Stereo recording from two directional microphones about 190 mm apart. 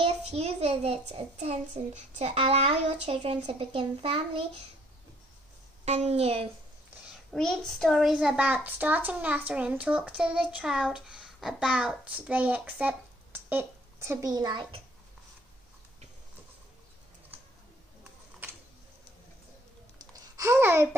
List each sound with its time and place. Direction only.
0.0 s a child's voice: 35° right (ahead or behind)
5.9 s a child's voice: 35° right (ahead or behind)
7.3 s a child's voice: 5° left (ahead or behind); by 14.8 s 20° right (ahead or behind)
20.1 s babbling: 15° right (ahead or behind)